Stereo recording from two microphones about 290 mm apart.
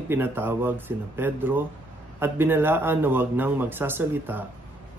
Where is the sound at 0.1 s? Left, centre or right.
Centre.